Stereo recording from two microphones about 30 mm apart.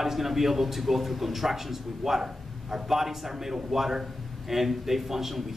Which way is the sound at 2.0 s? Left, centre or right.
Centre.